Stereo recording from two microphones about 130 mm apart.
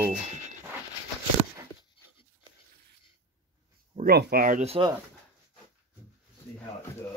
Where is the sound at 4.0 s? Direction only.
90° right.